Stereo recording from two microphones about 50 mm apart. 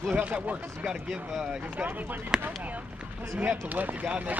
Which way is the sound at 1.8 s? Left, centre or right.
Right.